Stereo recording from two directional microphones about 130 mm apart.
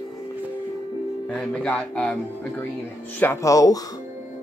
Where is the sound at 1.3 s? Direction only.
5° left (ahead or behind).